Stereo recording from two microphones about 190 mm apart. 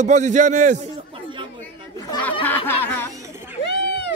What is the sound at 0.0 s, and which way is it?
Speech, 40° right (ahead or behind).